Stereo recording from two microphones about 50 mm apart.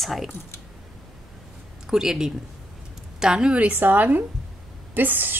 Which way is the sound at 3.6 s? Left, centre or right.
Right.